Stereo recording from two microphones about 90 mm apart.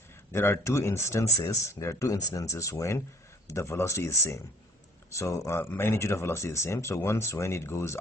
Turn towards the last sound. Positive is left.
turn(degrees=30)  # may be behind; listen again after turning